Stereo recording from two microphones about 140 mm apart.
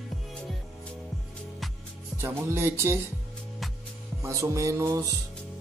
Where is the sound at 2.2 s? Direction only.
15° right (ahead or behind).